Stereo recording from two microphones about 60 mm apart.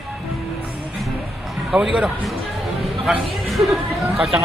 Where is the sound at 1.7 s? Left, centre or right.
Right.